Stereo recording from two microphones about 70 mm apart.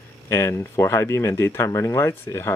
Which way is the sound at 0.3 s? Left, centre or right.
Left.